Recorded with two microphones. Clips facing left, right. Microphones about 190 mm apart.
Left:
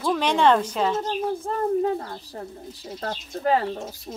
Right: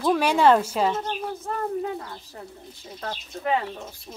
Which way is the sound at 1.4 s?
35° left (ahead or behind).